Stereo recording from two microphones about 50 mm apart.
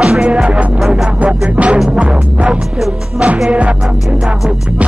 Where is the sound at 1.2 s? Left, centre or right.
Right.